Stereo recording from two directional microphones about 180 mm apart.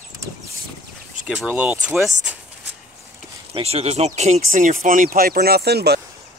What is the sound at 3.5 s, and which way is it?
Speech, 35° right (ahead or behind).